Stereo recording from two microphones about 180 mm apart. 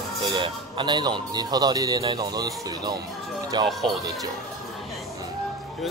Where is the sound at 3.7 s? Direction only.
Centre (ahead or behind).